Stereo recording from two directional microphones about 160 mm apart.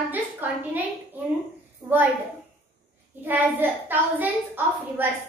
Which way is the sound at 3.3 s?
10° right (ahead or behind).